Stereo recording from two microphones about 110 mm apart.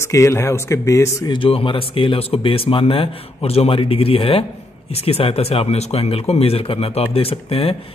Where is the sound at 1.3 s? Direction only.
55° left (ahead or behind).